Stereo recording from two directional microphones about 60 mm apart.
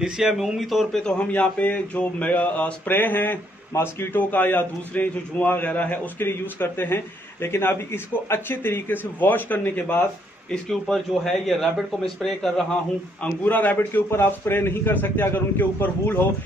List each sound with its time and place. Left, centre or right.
0.0 s speech: centre
0.9 s speech: centre
2.9 s a man's voice: left
4.2 s a man's voice: left
10.5 s a man's voice: centre
13.2 s a man's voice: left